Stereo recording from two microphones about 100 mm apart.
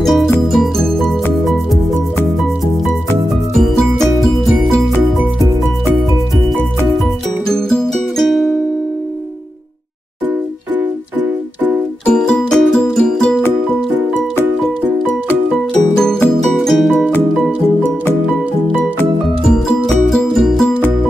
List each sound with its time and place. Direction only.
0.0 s music: centre (ahead or behind)
7.4 s music: 5° left (ahead or behind)
10.8 s music: 15° right (ahead or behind)
12.1 s music: 10° left (ahead or behind)
15.5 s music: 5° left (ahead or behind)
20.1 s music: centre (ahead or behind)